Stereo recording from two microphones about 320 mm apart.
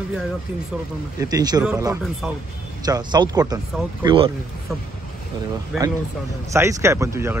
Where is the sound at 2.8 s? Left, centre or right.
Centre.